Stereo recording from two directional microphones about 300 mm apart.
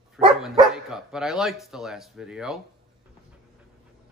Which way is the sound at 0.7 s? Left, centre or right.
Centre.